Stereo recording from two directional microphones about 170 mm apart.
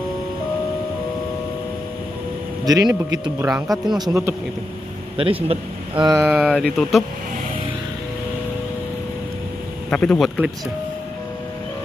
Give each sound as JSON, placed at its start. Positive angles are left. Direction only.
{"t": 2.6, "sound": "speech", "side_deg": -20}
{"t": 2.9, "sound": "speech", "side_deg": -10}
{"t": 4.0, "sound": "speech", "side_deg": -15}
{"t": 5.1, "sound": "a man's voice", "side_deg": -35}
{"t": 6.0, "sound": "speech", "side_deg": -15}
{"t": 6.3, "sound": "speech", "side_deg": 0}
{"t": 9.8, "sound": "speech", "side_deg": 5}